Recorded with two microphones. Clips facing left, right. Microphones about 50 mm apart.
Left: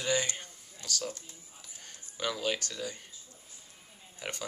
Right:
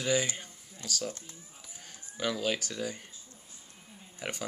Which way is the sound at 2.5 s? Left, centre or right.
Centre.